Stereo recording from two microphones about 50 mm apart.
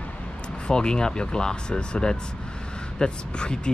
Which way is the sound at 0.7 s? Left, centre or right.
Centre.